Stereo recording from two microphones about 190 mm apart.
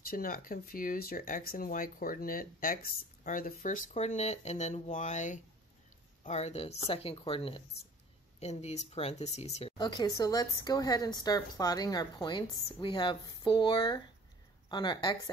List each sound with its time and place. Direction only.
0.1 s speech: 45° left (ahead or behind); by 15.3 s 25° left (ahead or behind)